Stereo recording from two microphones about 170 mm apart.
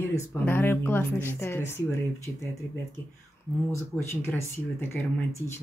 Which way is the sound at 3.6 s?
15° left (ahead or behind).